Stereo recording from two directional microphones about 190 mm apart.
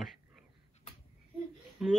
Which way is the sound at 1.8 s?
5° right (ahead or behind).